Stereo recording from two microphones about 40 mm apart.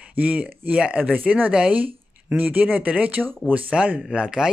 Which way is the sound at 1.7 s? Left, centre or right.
Right.